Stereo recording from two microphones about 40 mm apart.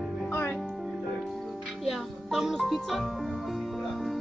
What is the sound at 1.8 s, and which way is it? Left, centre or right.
Music, centre.